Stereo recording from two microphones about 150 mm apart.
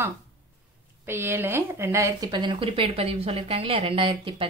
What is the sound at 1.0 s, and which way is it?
Speech, 15° right (ahead or behind).